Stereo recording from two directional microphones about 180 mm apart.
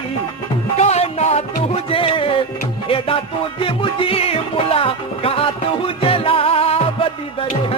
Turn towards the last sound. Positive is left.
turn(degrees=30)  # may be behind; listen again after turning